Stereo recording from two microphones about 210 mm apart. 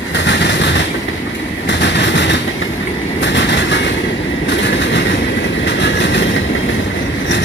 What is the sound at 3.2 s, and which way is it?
Train, 60° left (ahead or behind).